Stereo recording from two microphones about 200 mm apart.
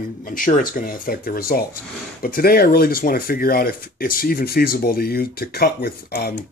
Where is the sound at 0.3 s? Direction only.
45° left (ahead or behind).